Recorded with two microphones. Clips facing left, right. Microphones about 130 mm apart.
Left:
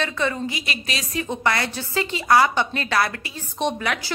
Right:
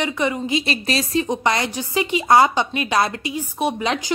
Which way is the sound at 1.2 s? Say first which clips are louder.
Right 3 dB; 20° right (ahead or behind).